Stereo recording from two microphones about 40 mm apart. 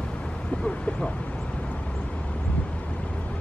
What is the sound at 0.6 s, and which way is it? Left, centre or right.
Speech, left.